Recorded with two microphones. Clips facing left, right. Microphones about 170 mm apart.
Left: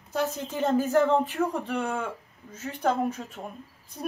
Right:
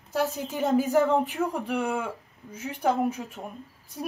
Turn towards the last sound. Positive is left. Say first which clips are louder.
# even
turn(degrees=-5)  # may be behind; listen again after turning